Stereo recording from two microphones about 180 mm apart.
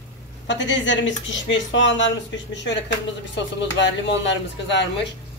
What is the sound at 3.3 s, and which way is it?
Speech, 80° left.